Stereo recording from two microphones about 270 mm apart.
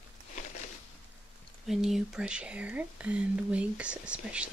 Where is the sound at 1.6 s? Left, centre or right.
Centre.